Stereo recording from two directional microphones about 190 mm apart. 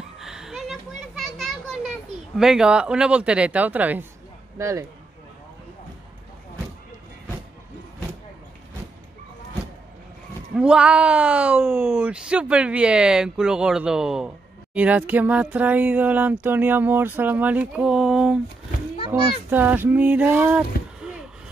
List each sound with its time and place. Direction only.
0.2 s children playing: centre (ahead or behind)
2.3 s speech: 5° right (ahead or behind)
10.5 s speech: 5° right (ahead or behind)